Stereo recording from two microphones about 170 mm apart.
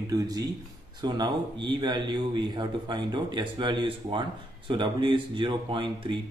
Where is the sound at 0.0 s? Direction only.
20° right (ahead or behind).